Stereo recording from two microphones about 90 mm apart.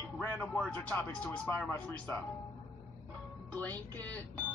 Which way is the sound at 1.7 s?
30° left (ahead or behind).